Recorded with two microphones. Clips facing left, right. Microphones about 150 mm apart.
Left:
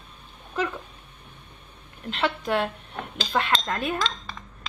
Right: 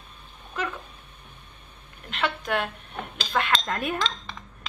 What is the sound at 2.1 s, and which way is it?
A woman's voice, 25° left (ahead or behind).